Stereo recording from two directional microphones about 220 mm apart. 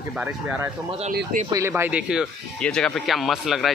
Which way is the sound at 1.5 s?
15° right (ahead or behind).